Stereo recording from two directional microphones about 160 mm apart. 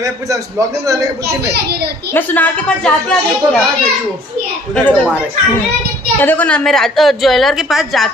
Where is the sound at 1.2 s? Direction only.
90° right.